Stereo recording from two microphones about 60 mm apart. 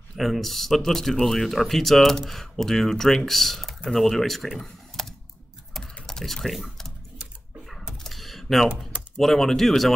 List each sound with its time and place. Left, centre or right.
0.1 s speech: centre
5.0 s typing: centre
8.0 s typing: centre
8.6 s typing: centre
9.2 s speech: centre